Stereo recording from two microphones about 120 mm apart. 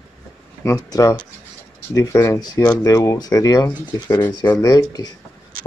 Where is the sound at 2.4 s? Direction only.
35° left (ahead or behind).